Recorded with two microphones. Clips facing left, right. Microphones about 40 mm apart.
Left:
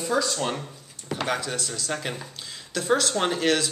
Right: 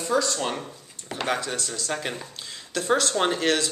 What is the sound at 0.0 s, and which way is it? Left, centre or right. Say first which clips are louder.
Speech: right 1 dB; centre.